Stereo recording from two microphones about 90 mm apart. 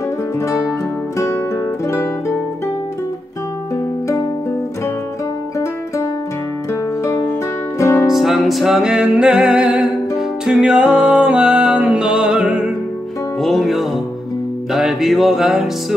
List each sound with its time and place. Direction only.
0.4 s music: 35° left (ahead or behind)
6.7 s music: 30° left (ahead or behind)
8.1 s music: centre (ahead or behind)
13.4 s music: centre (ahead or behind)